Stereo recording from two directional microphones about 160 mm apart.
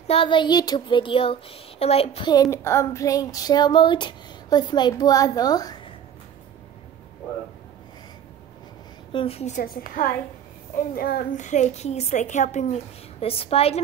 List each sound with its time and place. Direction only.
0.0 s speech: 35° left (ahead or behind)
2.5 s a sound: 15° left (ahead or behind)
9.1 s speech: 35° left (ahead or behind)
9.6 s a woman's voice: 65° left (ahead or behind)
11.0 s a child's voice: 75° left (ahead or behind)
11.3 s a woman's voice: 50° left (ahead or behind)